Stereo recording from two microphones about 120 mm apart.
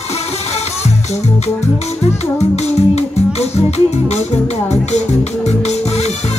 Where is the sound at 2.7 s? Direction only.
60° left (ahead or behind).